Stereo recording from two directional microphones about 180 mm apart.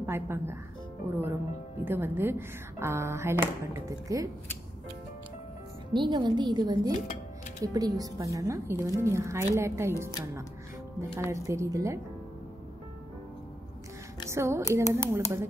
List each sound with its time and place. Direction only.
0.0 s a woman's voice: 15° right (ahead or behind)
5.9 s a woman's voice: 25° right (ahead or behind)
14.3 s a woman's voice: 15° right (ahead or behind)